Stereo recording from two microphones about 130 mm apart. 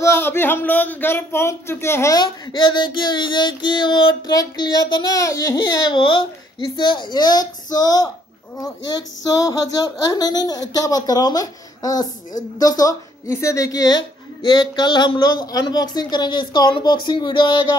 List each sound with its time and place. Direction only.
0.0 s speech: 20° left (ahead or behind)
2.1 s a woman's voice: 35° left (ahead or behind)